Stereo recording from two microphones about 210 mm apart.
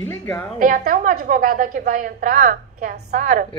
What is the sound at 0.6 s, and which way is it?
A woman's voice, 40° right (ahead or behind).